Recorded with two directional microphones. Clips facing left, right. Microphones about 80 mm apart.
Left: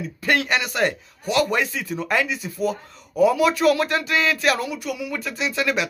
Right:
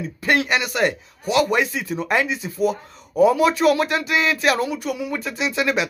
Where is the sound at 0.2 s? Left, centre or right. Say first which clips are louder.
Right 2 dB; centre.